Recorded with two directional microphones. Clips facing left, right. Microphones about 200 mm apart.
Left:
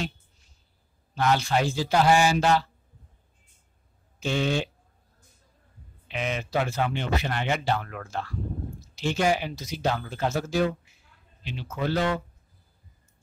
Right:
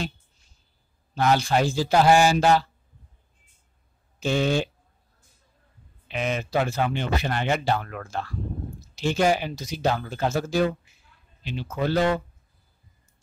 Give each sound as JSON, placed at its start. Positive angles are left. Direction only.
{"t": 1.1, "sound": "speech", "side_deg": -40}
{"t": 4.2, "sound": "speech", "side_deg": -40}
{"t": 6.1, "sound": "speech", "side_deg": -45}